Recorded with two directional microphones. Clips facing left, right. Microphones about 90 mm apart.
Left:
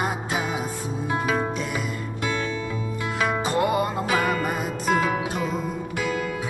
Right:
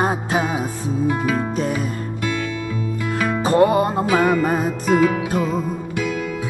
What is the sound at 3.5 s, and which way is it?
Music, 35° right (ahead or behind).